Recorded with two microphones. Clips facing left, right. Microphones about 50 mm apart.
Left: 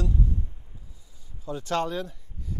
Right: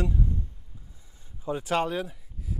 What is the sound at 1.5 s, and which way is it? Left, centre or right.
Speech, centre.